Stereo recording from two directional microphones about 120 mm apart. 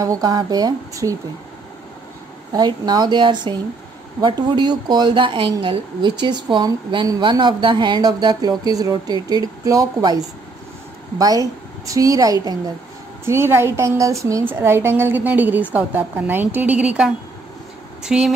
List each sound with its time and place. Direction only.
0.0 s speech: 30° right (ahead or behind)
2.5 s a woman's voice: 35° right (ahead or behind); by 18.3 s 5° right (ahead or behind)